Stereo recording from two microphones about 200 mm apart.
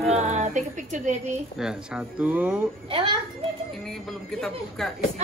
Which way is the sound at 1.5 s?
5° right (ahead or behind).